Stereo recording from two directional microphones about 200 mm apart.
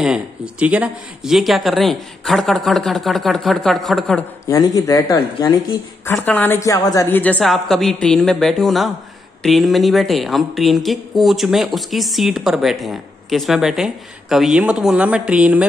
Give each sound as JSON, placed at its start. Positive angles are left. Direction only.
{"t": 0.0, "sound": "a woman's voice", "side_deg": -5}
{"t": 4.5, "sound": "a woman's voice", "side_deg": 15}